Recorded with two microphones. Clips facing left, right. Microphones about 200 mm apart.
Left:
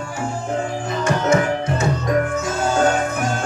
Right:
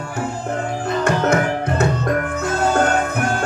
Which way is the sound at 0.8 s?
60° right (ahead or behind).